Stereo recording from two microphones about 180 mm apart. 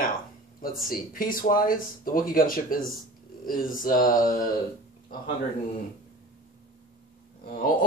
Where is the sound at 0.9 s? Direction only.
50° left (ahead or behind).